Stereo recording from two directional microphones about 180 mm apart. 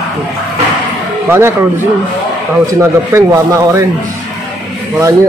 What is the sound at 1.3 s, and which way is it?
Speech, 15° right (ahead or behind).